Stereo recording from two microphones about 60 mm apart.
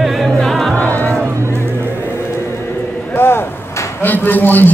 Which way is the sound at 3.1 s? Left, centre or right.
Left.